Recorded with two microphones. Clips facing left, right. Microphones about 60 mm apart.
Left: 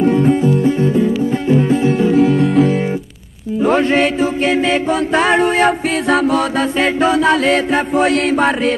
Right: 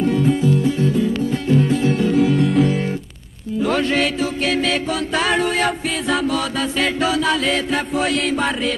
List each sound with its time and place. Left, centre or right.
0.2 s music: left
2.1 s music: centre
3.6 s mantra: left
5.1 s music: left
6.1 s chant: left
7.0 s chant: left